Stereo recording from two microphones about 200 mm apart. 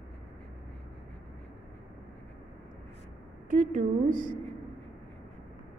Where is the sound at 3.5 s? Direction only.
40° right (ahead or behind).